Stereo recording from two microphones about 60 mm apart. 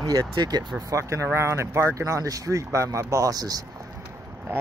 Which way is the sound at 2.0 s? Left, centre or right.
Right.